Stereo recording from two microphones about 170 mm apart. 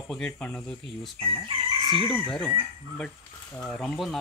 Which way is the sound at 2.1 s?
5° left (ahead or behind).